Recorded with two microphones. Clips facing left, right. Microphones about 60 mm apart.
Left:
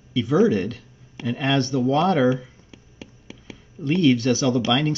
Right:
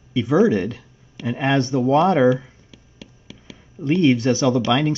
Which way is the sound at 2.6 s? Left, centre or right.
Left.